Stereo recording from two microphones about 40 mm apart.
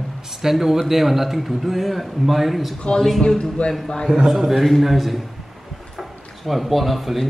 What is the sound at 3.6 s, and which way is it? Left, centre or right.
Speech, left.